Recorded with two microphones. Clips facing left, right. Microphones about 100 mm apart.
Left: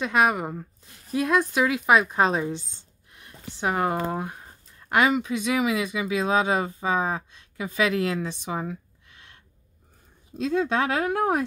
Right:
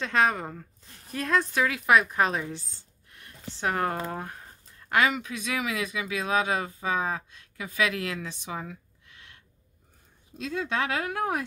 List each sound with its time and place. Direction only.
0.0 s a woman's voice: 10° left (ahead or behind); by 11.4 s 35° left (ahead or behind)